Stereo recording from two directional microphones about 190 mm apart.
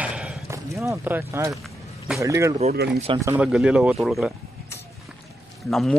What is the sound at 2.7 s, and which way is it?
Speech, 55° right (ahead or behind).